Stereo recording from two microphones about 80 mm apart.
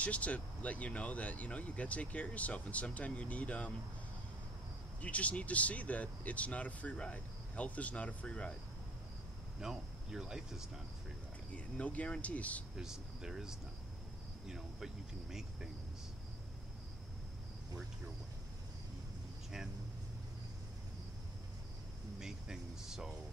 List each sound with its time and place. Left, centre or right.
0.0 s speech: centre
5.0 s speech: centre
9.6 s speech: centre
11.5 s speech: centre
12.7 s speech: centre
22.2 s a sound: centre